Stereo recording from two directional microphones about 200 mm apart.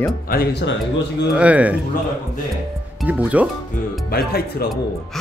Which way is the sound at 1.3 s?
5° right (ahead or behind).